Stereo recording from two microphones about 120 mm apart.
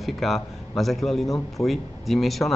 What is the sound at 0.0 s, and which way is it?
A man's voice, centre (ahead or behind).